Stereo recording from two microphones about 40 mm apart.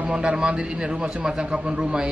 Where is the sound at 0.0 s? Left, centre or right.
Right.